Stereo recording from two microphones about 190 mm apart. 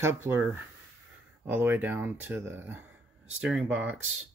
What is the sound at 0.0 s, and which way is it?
Speech, 15° right (ahead or behind).